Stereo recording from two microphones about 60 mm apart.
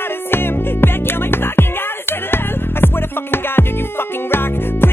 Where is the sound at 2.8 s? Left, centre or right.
Left.